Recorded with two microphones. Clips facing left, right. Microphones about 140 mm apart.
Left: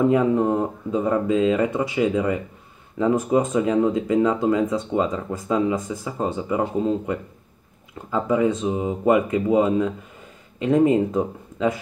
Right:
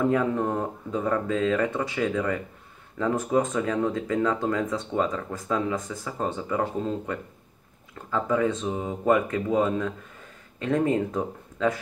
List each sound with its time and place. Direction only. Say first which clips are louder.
0.0 s speech: left 5 dB; 15° left (ahead or behind)